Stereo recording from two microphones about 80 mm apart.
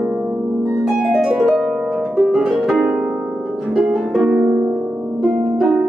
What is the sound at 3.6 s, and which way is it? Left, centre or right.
Harp, centre.